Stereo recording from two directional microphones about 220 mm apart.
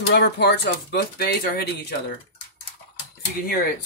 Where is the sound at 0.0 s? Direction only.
50° left (ahead or behind).